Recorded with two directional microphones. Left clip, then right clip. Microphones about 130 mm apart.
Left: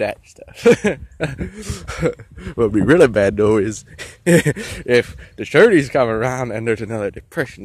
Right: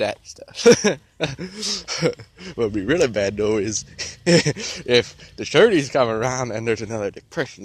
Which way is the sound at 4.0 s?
45° left (ahead or behind).